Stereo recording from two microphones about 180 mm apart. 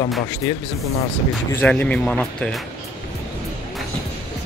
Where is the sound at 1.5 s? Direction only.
10° left (ahead or behind).